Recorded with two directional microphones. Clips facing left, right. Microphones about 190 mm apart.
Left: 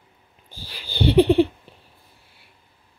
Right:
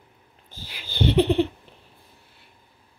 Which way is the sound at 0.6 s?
35° left (ahead or behind).